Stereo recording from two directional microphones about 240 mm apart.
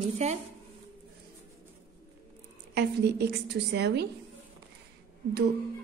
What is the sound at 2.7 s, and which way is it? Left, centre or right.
A woman's voice, right.